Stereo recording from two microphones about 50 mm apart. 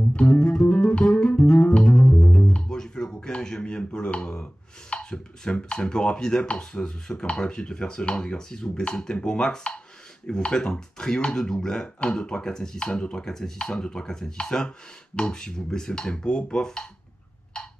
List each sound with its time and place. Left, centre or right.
0.1 s music: left
10.2 s speech: centre